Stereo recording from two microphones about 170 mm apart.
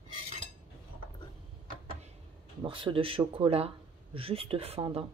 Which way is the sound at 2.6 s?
30° right (ahead or behind).